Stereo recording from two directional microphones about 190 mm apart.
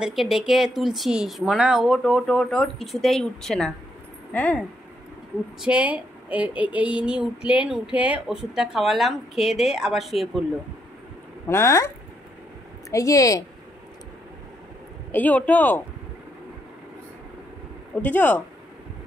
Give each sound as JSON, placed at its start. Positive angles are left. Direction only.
{"t": 0.0, "sound": "a woman's voice", "side_deg": 0}
{"t": 5.6, "sound": "a woman's voice", "side_deg": -5}
{"t": 11.4, "sound": "speech", "side_deg": 15}
{"t": 12.9, "sound": "speech", "side_deg": 15}
{"t": 15.0, "sound": "speech", "side_deg": 10}
{"t": 18.0, "sound": "speech", "side_deg": 10}